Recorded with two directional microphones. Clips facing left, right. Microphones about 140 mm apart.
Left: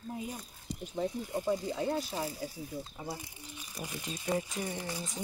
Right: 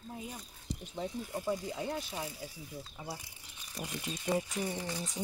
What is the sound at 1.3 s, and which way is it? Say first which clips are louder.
Speech: left 3 dB; 20° left (ahead or behind).